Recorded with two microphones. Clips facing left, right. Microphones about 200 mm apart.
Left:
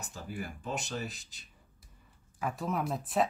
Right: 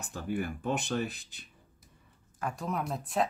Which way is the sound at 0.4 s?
60° right (ahead or behind).